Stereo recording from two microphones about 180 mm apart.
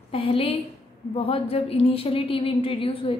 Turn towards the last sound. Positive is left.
turn(degrees=30)  # may be behind; listen again after turning